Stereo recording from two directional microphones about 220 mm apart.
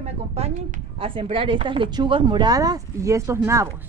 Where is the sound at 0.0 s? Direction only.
30° right (ahead or behind); by 3.6 s 15° right (ahead or behind).